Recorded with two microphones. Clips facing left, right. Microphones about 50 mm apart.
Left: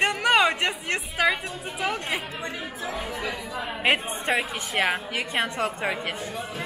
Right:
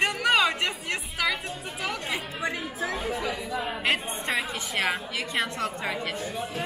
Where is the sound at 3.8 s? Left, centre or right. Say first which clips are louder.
Left 7 dB; left.